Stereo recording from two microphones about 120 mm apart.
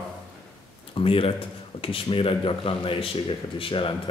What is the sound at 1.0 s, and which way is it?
Speech, 50° left (ahead or behind).